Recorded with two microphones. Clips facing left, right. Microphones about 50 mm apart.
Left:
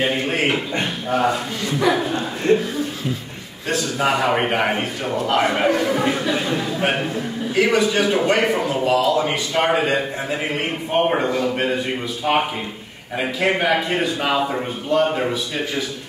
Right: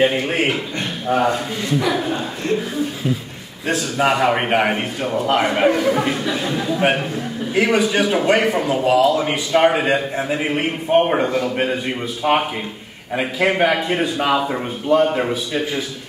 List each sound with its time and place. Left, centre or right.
0.0 s a man's voice: centre
1.7 s a man's voice: centre
2.4 s speech: left
3.6 s a man's voice: centre
7.5 s a man's voice: centre